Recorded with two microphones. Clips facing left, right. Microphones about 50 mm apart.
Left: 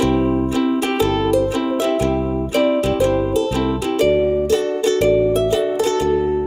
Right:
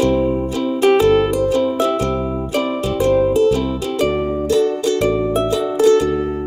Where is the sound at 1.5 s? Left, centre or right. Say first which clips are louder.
Right 2 dB; left.